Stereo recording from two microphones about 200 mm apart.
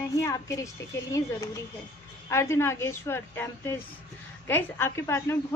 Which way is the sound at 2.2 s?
15° left (ahead or behind).